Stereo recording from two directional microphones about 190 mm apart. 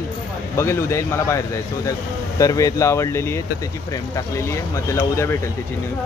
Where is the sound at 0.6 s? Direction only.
15° left (ahead or behind).